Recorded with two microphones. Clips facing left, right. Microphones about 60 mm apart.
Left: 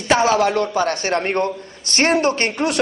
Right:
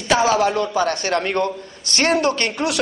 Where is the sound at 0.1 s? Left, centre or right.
Left.